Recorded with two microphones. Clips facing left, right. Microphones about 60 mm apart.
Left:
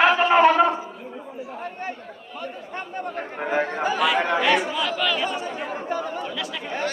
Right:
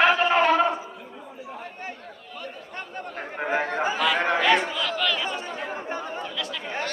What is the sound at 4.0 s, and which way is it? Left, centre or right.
Chatter, centre.